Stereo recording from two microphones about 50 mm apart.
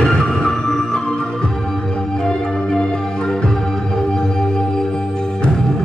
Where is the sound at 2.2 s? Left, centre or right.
Centre.